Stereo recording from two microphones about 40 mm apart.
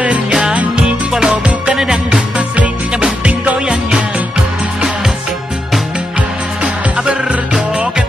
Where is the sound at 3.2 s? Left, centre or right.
Right.